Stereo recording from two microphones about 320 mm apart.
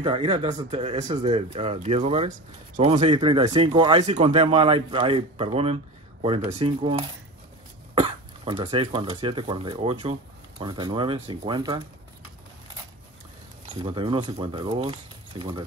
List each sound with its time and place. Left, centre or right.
0.0 s speech: centre
13.7 s speech: centre